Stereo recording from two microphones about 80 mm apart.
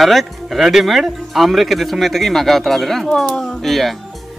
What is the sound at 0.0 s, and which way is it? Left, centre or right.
Speech, centre.